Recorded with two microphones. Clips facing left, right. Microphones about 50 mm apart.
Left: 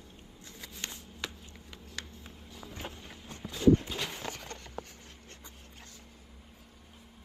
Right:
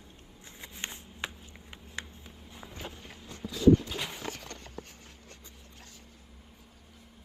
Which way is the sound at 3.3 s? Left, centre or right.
Left.